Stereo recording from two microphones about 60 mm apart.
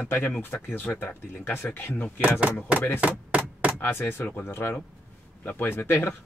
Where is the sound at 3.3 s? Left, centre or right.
Right.